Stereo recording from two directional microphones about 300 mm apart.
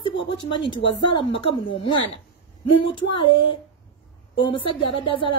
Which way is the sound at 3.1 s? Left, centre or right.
Centre.